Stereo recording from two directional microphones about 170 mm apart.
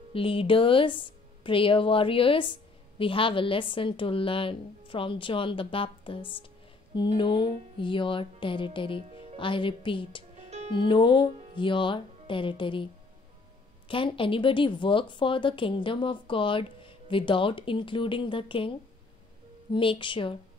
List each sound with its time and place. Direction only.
0.1 s a woman's voice: 30° left (ahead or behind)
13.8 s a woman's voice: 30° left (ahead or behind)